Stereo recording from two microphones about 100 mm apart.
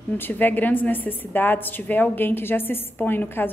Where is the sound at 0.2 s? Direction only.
20° left (ahead or behind).